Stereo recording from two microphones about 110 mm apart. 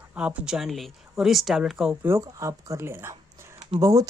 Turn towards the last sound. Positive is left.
turn(degrees=-30)  # may be behind; listen again after turning